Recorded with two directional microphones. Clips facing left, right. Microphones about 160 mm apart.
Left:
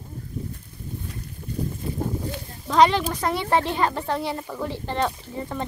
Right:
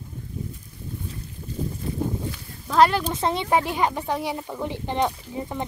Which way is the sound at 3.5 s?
10° right (ahead or behind).